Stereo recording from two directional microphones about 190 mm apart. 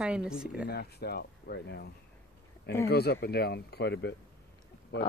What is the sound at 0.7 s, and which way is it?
Speech, 55° left (ahead or behind).